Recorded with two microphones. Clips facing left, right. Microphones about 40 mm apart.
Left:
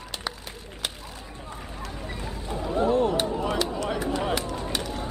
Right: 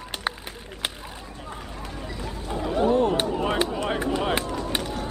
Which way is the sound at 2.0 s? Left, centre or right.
Left.